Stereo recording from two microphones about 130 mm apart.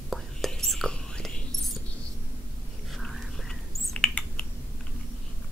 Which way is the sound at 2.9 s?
Centre (ahead or behind).